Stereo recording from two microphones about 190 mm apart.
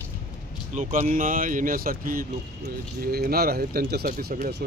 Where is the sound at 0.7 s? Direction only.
40° right (ahead or behind).